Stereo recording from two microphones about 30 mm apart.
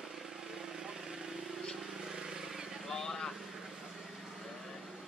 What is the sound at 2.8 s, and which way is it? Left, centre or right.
Vehicle, centre.